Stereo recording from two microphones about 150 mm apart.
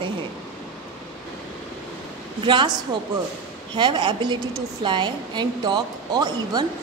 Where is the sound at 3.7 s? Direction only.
30° right (ahead or behind).